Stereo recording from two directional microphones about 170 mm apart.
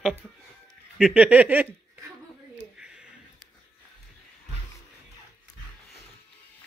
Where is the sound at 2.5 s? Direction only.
5° right (ahead or behind).